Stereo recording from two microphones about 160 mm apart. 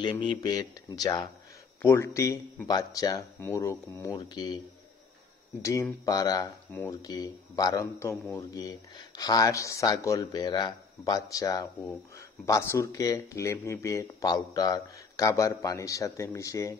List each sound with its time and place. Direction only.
0.0 s speech: 30° left (ahead or behind)
5.6 s speech: 20° left (ahead or behind)
6.7 s speech: 10° left (ahead or behind)
7.0 s speech: 25° left (ahead or behind)